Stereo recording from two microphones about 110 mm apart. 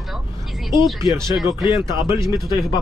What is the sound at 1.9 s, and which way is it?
Speech, 45° left (ahead or behind).